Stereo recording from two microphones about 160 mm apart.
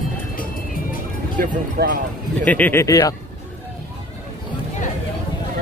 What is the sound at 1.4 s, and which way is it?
Speech, 60° right (ahead or behind).